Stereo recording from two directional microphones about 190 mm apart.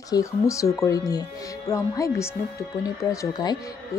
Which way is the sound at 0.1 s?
15° left (ahead or behind).